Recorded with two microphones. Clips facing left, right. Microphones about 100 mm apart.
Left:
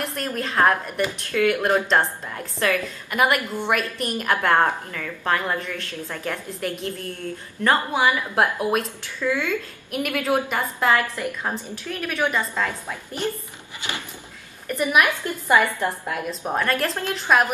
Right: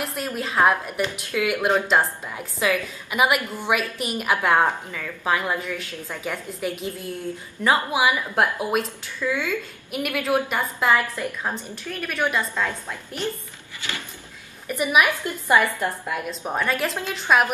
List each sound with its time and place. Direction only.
0.0 s speech: 5° right (ahead or behind)
13.7 s a sound: 20° left (ahead or behind)
14.7 s speech: 5° right (ahead or behind)
16.1 s speech: centre (ahead or behind)